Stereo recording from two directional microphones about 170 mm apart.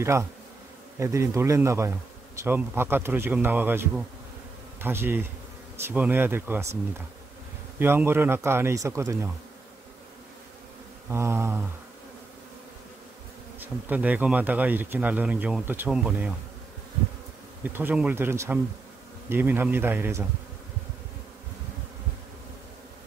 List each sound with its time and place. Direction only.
0.0 s speech: 15° right (ahead or behind)
11.1 s speech: 15° right (ahead or behind)
13.6 s speech: 10° right (ahead or behind)
17.6 s speech: 10° right (ahead or behind)